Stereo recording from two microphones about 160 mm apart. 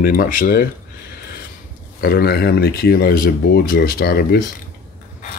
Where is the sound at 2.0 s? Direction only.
75° left (ahead or behind).